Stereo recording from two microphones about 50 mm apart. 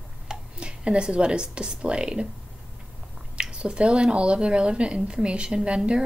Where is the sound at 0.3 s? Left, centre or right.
Centre.